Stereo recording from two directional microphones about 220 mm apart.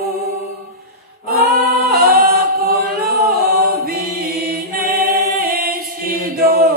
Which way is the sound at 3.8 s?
45° right (ahead or behind).